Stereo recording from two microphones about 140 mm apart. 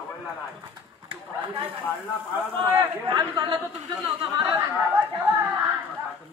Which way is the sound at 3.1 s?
30° right (ahead or behind).